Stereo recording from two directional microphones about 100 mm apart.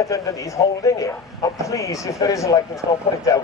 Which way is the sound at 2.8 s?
55° right (ahead or behind).